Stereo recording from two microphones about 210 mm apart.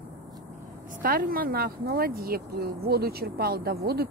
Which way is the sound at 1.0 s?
45° right (ahead or behind).